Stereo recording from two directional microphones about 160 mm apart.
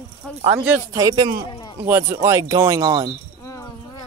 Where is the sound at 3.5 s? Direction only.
20° left (ahead or behind).